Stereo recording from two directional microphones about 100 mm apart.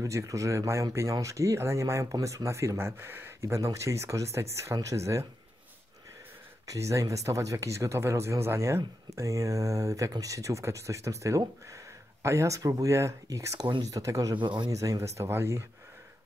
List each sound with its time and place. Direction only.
0.0 s speech: 35° right (ahead or behind)
6.7 s speech: 30° right (ahead or behind)
14.3 s speech: 50° right (ahead or behind)
14.7 s speech: 30° right (ahead or behind)